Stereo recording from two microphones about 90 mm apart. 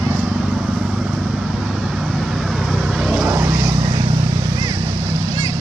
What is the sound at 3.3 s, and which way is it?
Vehicle, 30° right (ahead or behind).